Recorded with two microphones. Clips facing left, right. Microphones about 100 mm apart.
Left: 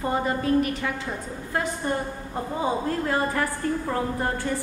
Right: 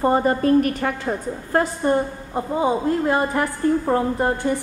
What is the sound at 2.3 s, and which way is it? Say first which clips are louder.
A woman's voice: right 6 dB; 20° right (ahead or behind).